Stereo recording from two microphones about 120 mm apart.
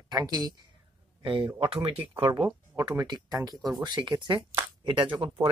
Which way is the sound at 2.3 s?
35° right (ahead or behind).